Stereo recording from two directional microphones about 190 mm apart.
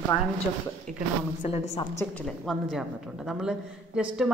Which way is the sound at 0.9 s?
40° right (ahead or behind).